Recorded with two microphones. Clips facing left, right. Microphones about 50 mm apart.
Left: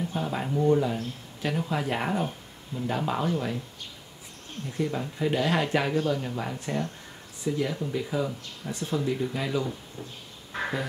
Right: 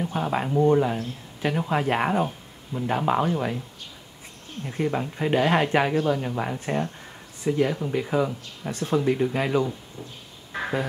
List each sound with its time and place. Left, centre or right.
0.1 s speech: right
4.6 s speech: right